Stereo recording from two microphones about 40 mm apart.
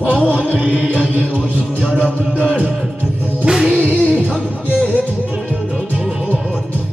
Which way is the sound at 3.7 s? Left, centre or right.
Right.